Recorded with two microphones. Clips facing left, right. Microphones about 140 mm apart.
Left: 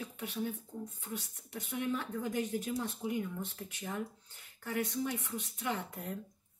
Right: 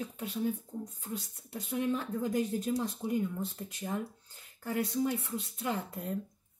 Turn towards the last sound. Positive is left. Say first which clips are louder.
# right 3 dB
turn(degrees=-30)  # may be behind; listen again after turning